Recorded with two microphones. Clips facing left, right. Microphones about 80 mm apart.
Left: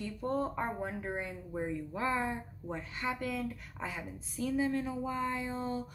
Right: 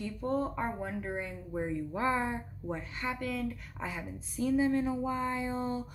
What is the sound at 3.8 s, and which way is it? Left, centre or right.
A woman's voice, centre.